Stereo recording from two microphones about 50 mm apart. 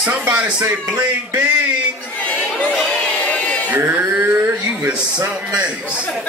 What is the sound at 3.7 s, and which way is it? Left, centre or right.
Music, right.